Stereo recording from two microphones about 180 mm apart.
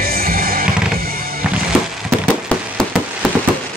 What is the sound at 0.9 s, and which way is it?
Drum kit, 55° right (ahead or behind).